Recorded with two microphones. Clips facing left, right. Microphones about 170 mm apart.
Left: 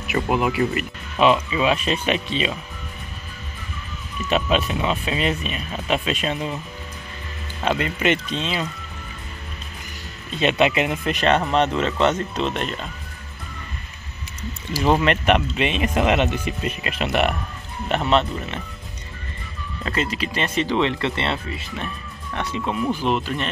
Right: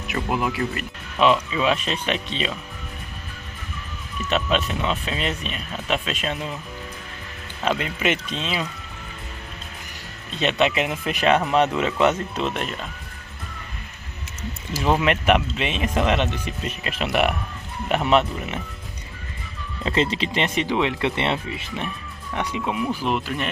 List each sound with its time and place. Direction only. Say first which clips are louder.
0.1 s speech: left 4 dB; 5° left (ahead or behind)
4.2 s speech: left 2 dB; 5° left (ahead or behind)
7.6 s speech: left 2 dB; centre (ahead or behind)
10.4 s speech: left 2 dB; 5° left (ahead or behind)
14.8 s speech: left 2 dB; 5° right (ahead or behind)
19.8 s speech: right 3 dB; 25° right (ahead or behind); by 23.5 s 5° right (ahead or behind)